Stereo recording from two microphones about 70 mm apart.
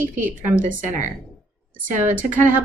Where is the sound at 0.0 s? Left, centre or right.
Right.